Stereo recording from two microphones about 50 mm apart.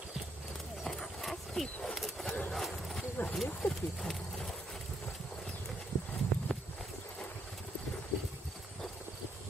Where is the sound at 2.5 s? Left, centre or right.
Centre.